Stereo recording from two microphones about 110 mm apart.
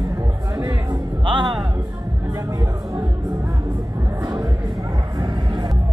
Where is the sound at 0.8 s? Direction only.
45° right (ahead or behind).